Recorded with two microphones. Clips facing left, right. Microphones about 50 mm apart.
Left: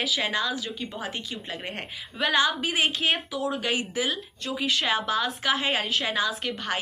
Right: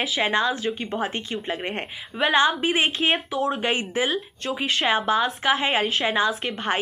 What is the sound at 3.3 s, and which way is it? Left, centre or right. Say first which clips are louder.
A woman's voice: right 4 dB; right.